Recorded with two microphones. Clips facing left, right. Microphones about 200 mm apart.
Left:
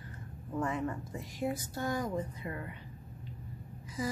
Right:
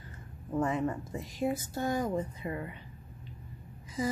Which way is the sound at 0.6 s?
20° right (ahead or behind).